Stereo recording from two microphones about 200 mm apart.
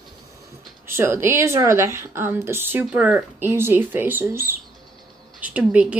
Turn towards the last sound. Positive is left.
turn(degrees=-5)  # may be behind; listen again after turning